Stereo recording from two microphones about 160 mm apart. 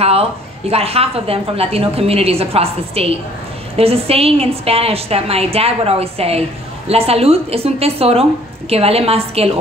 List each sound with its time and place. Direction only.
0.0 s a woman's voice: 40° right (ahead or behind)